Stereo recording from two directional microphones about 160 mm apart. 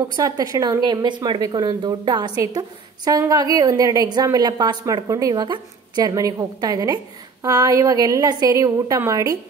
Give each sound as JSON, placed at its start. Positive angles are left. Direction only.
{"t": 0.1, "sound": "a woman's voice", "side_deg": -20}